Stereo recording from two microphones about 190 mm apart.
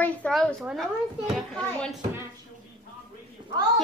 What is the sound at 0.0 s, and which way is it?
A child's voice, 5° left (ahead or behind).